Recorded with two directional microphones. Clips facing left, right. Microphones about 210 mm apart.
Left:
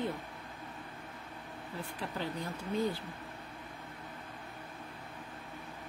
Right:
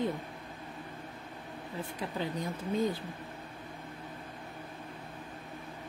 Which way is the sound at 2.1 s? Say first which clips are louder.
Right 3 dB; 15° right (ahead or behind).